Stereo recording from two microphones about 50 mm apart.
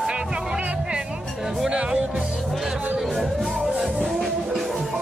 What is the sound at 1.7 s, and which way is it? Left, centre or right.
Speech, centre.